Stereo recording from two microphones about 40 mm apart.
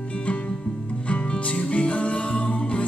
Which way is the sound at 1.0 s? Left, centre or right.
Left.